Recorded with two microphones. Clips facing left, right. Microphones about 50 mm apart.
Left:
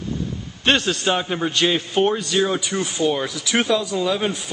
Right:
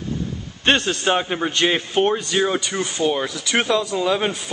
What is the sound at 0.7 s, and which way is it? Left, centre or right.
A man's voice, centre.